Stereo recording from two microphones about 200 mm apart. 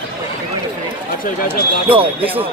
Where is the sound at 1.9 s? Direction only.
25° right (ahead or behind).